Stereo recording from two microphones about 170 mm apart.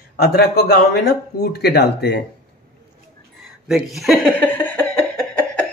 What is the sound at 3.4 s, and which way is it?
Speech, centre (ahead or behind).